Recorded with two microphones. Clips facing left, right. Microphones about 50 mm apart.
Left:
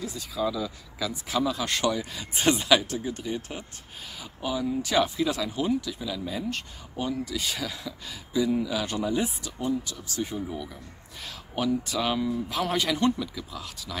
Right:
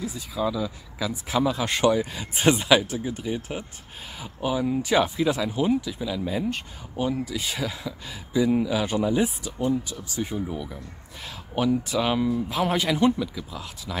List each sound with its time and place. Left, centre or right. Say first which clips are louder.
0.0 s speech: right 2 dB; centre